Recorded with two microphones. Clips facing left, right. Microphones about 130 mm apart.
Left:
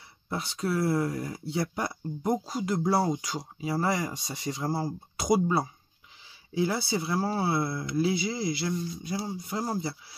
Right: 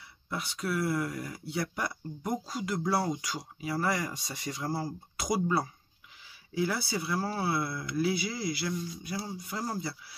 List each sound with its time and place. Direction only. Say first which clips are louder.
0.3 s speech: left 3 dB; 30° left (ahead or behind)